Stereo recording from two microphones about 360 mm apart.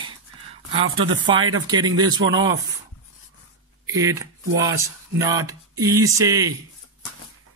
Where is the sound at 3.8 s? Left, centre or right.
Centre.